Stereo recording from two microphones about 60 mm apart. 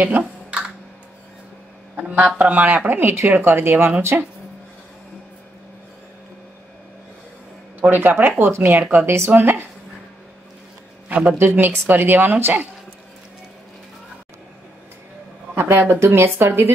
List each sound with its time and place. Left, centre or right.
0.0 s computer keyboard: right
2.0 s a man's voice: right
4.1 s speech: right
7.8 s speech: right
9.3 s a sound: right
11.1 s a sound: right
11.3 s speech: right
15.5 s speech: right